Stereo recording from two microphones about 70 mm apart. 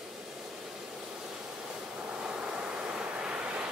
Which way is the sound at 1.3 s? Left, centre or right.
Centre.